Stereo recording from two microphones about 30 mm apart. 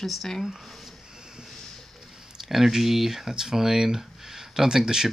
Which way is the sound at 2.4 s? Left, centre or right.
Centre.